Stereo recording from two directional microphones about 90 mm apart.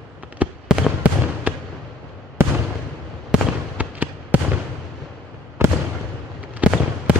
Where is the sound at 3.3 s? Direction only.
15° right (ahead or behind).